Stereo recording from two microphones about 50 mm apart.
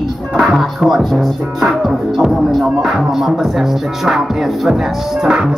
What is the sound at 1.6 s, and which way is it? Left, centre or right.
Music, centre.